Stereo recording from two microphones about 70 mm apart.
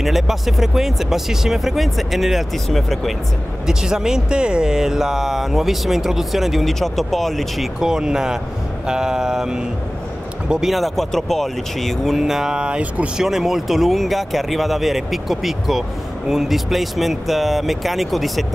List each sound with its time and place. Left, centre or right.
0.0 s speech: centre
3.6 s speech: centre
8.8 s vehicle: centre
10.5 s speech: centre
13.2 s speech: centre